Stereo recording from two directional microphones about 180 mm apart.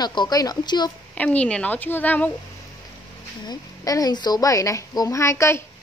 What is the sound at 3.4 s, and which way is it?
Speech, 20° left (ahead or behind).